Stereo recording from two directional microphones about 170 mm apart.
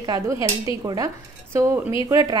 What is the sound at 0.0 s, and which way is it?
A woman's voice, 20° right (ahead or behind).